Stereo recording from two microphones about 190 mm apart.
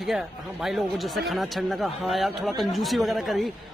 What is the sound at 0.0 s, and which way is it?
Speech, centre (ahead or behind).